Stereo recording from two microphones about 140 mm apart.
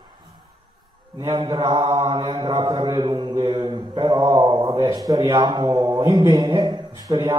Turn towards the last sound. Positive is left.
turn(degrees=-30)  # may be behind; listen again after turning